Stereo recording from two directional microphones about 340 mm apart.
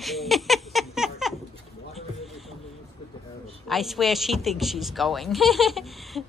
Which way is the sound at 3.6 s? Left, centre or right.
Centre.